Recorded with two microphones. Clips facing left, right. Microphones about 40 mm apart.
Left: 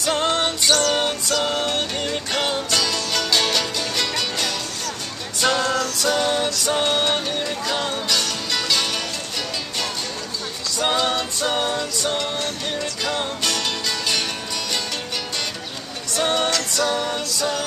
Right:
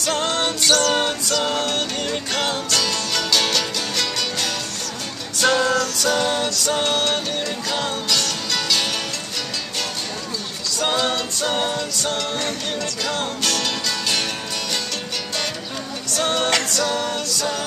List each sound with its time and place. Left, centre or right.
0.0 s music: centre
0.6 s music: centre
1.5 s music: centre
6.6 s music: centre
10.8 s music: centre
16.1 s music: centre